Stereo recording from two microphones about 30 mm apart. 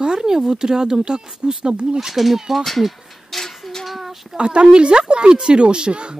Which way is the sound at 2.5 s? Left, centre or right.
Centre.